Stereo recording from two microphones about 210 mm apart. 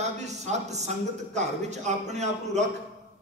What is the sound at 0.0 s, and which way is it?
A man's voice, 35° right (ahead or behind).